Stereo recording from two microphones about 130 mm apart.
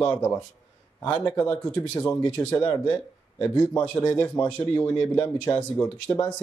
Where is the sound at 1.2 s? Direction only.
15° left (ahead or behind).